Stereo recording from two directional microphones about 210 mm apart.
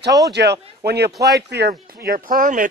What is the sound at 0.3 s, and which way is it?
Speech, 50° right (ahead or behind).